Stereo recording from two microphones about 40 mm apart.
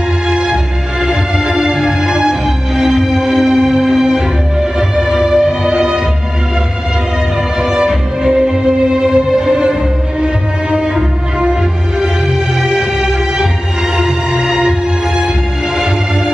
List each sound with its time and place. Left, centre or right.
0.3 s music: centre
7.6 s music: centre
12.5 s music: centre